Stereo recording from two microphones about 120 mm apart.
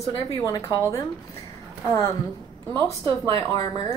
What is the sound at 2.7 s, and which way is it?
Speech, 35° right (ahead or behind).